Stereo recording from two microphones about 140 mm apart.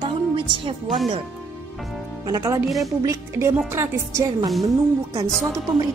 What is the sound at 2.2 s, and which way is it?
Speech, 25° right (ahead or behind).